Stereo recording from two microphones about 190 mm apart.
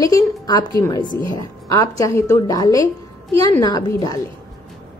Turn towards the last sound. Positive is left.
turn(degrees=20)  # may be behind; listen again after turning